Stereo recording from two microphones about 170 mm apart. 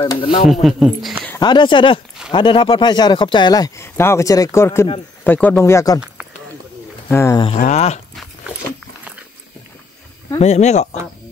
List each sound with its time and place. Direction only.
0.0 s speech: 30° left (ahead or behind)
0.5 s speech: centre (ahead or behind)
1.4 s speech: 25° left (ahead or behind)
7.1 s speech: 15° left (ahead or behind)
7.3 s speech: 30° left (ahead or behind)
10.4 s speech: 40° left (ahead or behind)